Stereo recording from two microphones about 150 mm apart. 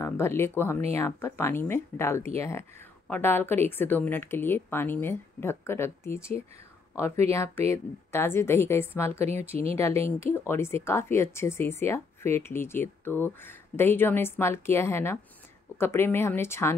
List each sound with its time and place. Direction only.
0.0 s speech: 15° left (ahead or behind)